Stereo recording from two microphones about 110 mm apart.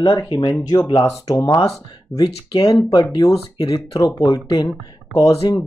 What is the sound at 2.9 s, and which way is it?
Speech, 40° left (ahead or behind).